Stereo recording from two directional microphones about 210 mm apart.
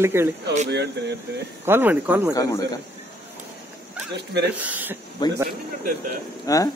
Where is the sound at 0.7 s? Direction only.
55° right (ahead or behind).